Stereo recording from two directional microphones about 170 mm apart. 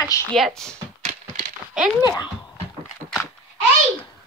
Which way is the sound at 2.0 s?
25° left (ahead or behind).